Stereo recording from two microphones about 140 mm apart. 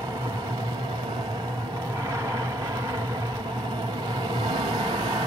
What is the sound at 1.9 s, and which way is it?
Vehicle, 20° right (ahead or behind).